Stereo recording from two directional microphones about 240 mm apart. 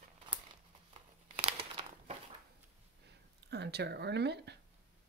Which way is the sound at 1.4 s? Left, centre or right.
Right.